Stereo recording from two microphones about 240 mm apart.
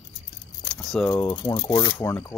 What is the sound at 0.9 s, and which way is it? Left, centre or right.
Speech, centre.